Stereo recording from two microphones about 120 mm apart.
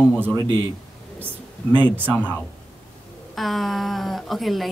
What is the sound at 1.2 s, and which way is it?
Speech, 15° right (ahead or behind).